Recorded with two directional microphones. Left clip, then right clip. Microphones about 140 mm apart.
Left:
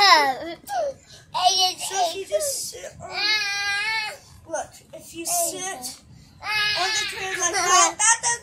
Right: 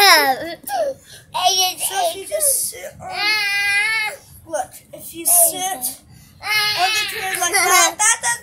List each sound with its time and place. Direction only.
0.0 s a sound: 60° right (ahead or behind)
2.3 s child singing: 30° right (ahead or behind)
5.2 s a sound: 45° right (ahead or behind)
6.4 s babbling: 55° right (ahead or behind)
6.9 s baby cry: 40° right (ahead or behind)
8.0 s music: 40° right (ahead or behind)